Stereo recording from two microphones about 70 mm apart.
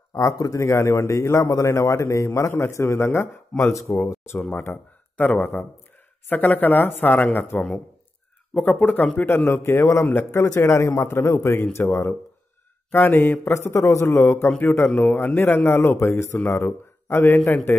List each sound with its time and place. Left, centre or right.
0.1 s a man's voice: left
4.4 s speech: left
5.3 s a man's voice: centre
10.4 s speech: left
12.9 s speech: left
14.6 s speech: left